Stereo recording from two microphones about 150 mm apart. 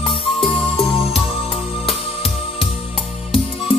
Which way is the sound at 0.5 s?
40° left (ahead or behind).